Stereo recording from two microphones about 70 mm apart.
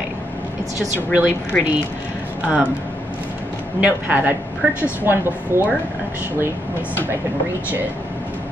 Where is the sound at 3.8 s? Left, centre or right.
Right.